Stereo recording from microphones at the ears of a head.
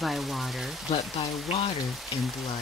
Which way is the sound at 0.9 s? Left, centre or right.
Left.